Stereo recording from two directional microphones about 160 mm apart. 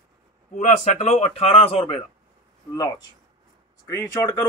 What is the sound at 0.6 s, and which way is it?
A man's voice, 45° left (ahead or behind).